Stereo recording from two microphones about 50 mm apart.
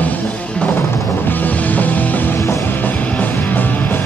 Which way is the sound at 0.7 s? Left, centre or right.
Left.